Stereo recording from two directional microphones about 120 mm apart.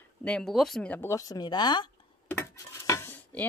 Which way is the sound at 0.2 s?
5° left (ahead or behind).